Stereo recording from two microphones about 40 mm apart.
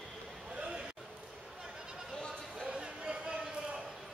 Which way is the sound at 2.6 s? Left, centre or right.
Right.